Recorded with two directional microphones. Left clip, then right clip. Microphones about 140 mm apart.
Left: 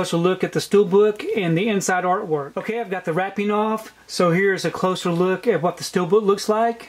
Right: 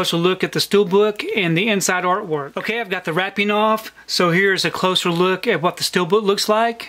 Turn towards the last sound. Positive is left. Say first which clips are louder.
# right 3 dB
turn(degrees=-25)  # may be behind; listen again after turning